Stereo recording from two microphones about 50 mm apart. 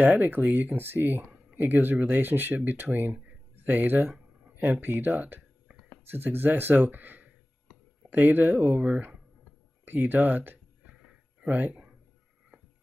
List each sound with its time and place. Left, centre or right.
0.0 s speech: right
6.0 s speech: right
9.8 s speech: right
10.9 s a sound: centre
11.4 s speech: right